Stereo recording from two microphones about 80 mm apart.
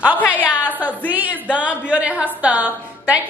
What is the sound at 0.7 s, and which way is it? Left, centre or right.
A woman's voice, right.